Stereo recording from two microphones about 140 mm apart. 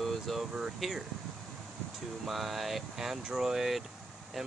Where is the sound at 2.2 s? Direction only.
Centre (ahead or behind).